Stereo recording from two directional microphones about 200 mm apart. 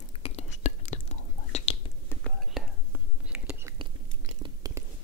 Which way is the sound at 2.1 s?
5° left (ahead or behind).